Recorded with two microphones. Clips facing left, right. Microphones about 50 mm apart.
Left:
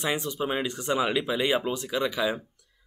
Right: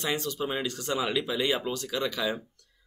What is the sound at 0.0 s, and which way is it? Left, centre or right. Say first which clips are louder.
Speech: left 2 dB; centre.